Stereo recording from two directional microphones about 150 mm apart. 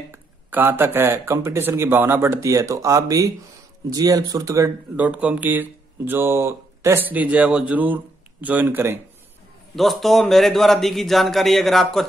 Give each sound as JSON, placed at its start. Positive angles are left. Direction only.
{"t": 0.1, "sound": "speech", "side_deg": -15}
{"t": 4.9, "sound": "speech", "side_deg": -10}
{"t": 9.8, "sound": "a man's voice", "side_deg": 0}